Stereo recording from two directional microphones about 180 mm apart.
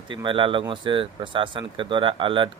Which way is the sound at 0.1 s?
25° right (ahead or behind).